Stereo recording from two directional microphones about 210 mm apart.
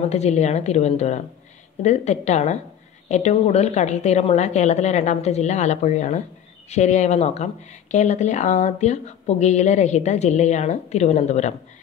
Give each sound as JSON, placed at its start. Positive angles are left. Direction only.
{"t": 0.1, "sound": "speech", "side_deg": 30}